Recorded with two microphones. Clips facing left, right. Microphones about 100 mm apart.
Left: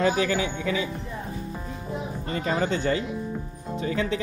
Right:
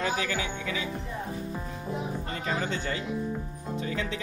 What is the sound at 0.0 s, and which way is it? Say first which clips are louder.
Speech: left 7 dB; 35° left (ahead or behind).